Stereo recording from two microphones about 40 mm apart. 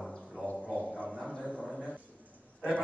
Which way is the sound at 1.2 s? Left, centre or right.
Left.